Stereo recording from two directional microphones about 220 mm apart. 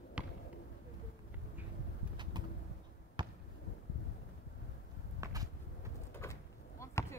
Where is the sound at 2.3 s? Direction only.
20° right (ahead or behind).